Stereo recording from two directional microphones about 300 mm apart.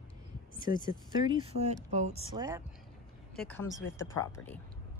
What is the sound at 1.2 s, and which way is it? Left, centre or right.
Speech, centre.